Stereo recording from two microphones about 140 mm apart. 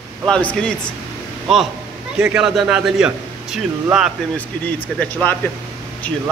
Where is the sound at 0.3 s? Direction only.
10° left (ahead or behind).